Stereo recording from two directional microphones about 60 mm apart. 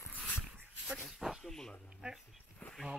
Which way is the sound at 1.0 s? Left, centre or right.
Centre.